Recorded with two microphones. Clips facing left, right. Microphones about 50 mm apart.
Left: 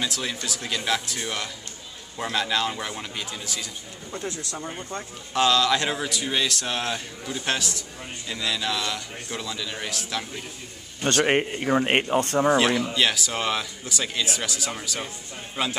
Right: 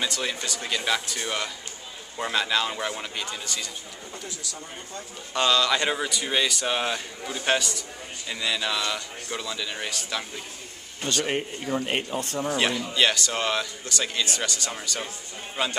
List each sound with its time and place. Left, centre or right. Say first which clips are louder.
0.0 s a man's voice: even; centre
4.2 s speech: left 9 dB; left
5.3 s a man's voice: left 2 dB; centre
11.2 s speech: left 6 dB; left
12.5 s a man's voice: left 3 dB; centre